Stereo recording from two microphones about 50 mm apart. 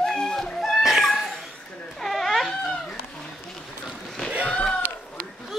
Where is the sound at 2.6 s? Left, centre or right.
Centre.